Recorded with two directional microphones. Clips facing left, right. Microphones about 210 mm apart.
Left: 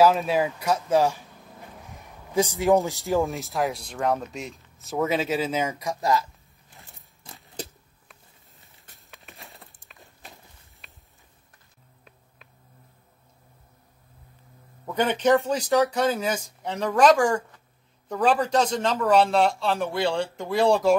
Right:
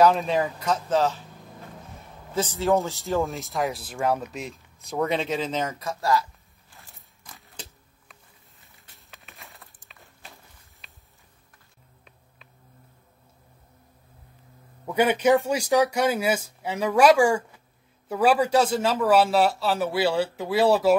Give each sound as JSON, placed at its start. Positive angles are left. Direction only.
{"t": 0.0, "sound": "speech", "side_deg": 5}
{"t": 2.3, "sound": "speech", "side_deg": 15}
{"t": 3.2, "sound": "speech", "side_deg": 0}
{"t": 6.7, "sound": "a sound", "side_deg": 20}
{"t": 8.7, "sound": "a sound", "side_deg": 0}
{"t": 14.9, "sound": "a man's voice", "side_deg": -10}